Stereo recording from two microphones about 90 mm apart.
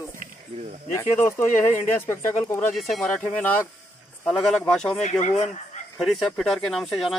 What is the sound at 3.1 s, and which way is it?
Speech, 20° left (ahead or behind).